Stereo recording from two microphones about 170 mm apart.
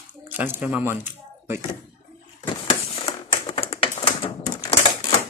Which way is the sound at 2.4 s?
35° left (ahead or behind).